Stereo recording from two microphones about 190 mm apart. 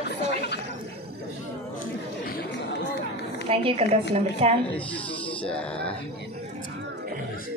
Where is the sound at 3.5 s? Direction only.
30° right (ahead or behind).